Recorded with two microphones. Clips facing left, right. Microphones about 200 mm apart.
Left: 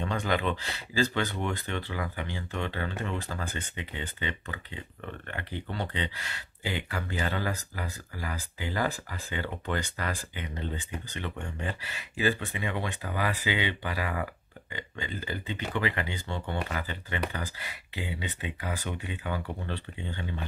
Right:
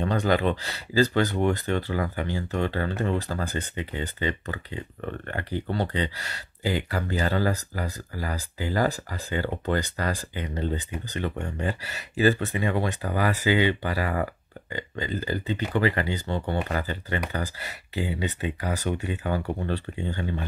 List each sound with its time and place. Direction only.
0.0 s speech: 40° right (ahead or behind)